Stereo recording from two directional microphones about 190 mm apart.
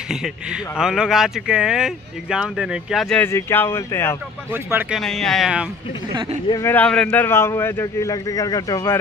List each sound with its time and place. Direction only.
0.1 s speech: 5° right (ahead or behind); by 4.2 s 10° left (ahead or behind)
4.5 s speech: 10° right (ahead or behind)
5.0 s speech: centre (ahead or behind)
6.5 s speech: 10° left (ahead or behind)